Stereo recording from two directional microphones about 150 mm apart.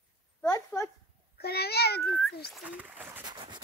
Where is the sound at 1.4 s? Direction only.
90° left.